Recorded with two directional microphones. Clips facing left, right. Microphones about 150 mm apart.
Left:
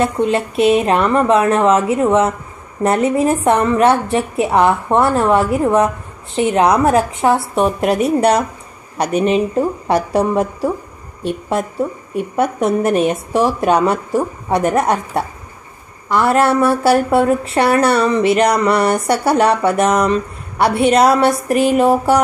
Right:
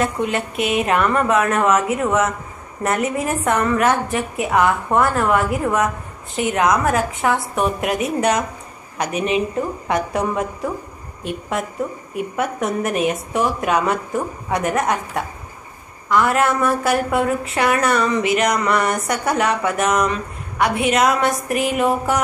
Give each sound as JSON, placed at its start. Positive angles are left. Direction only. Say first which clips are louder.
{"t": 0.0, "sound": "a woman's voice", "louder": "left 5 dB", "side_deg": 30}